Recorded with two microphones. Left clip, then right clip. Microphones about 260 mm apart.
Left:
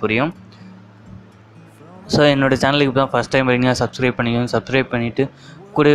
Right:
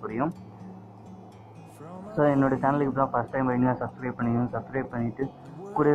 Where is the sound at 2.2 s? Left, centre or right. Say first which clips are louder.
Left 9 dB; left.